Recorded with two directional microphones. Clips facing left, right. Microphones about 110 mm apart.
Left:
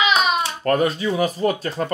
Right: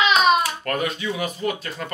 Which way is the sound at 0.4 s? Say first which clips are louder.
Left 5 dB; 35° left (ahead or behind).